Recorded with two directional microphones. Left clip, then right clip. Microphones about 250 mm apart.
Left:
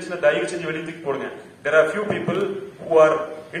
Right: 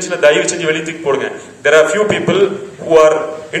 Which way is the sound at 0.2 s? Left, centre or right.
Right.